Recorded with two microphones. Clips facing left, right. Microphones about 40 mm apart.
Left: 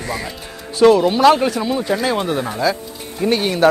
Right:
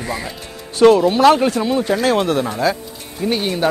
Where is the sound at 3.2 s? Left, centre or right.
Centre.